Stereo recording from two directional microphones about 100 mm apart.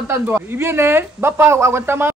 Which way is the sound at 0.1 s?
25° right (ahead or behind).